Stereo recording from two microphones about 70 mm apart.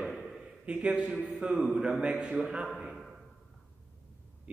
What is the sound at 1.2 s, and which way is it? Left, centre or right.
A man's voice, centre.